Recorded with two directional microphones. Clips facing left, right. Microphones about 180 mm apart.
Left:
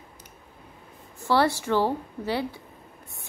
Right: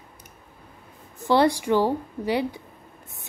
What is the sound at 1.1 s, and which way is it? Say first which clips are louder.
A woman's voice: right 3 dB; 20° right (ahead or behind).